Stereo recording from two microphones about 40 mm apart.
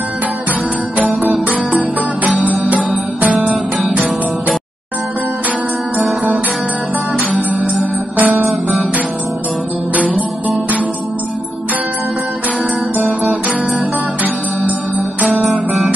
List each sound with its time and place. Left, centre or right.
2.2 s music: right
7.2 s music: right
9.9 s music: right